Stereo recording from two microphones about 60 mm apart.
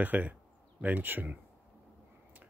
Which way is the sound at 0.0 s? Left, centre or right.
Right.